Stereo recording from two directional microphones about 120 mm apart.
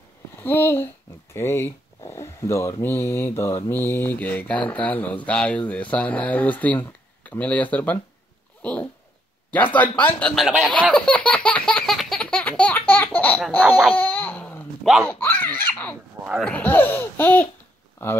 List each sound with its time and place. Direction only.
0.4 s mantra: 20° left (ahead or behind)
1.3 s a sound: 20° left (ahead or behind)
2.8 s mantra: 20° left (ahead or behind)
10.7 s laughter: 10° left (ahead or behind)
13.5 s a sound: 15° left (ahead or behind)
15.0 s speech: 15° left (ahead or behind)
16.4 s mantra: 15° left (ahead or behind)